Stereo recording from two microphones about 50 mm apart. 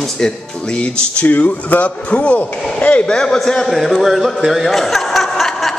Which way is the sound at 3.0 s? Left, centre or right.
Centre.